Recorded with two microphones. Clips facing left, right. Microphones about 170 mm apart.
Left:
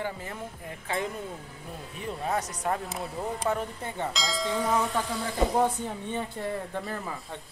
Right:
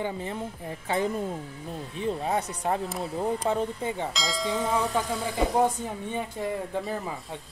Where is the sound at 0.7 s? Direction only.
30° right (ahead or behind).